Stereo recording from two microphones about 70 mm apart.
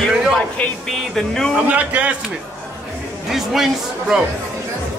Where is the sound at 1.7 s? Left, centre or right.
Right.